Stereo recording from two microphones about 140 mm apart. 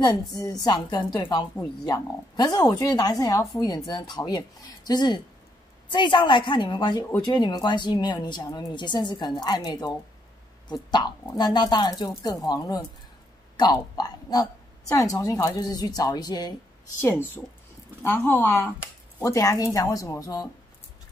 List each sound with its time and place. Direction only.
0.0 s a woman's voice: 30° left (ahead or behind)
17.0 s a woman's voice: 15° left (ahead or behind)